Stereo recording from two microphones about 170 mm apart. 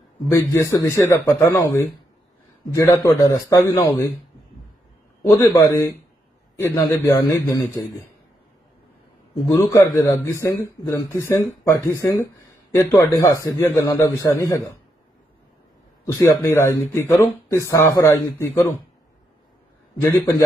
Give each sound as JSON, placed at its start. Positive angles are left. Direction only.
{"t": 0.3, "sound": "a man's voice", "side_deg": 15}
{"t": 5.3, "sound": "a man's voice", "side_deg": 20}
{"t": 9.5, "sound": "speech", "side_deg": 20}
{"t": 16.1, "sound": "speech", "side_deg": 15}
{"t": 20.0, "sound": "speech", "side_deg": 15}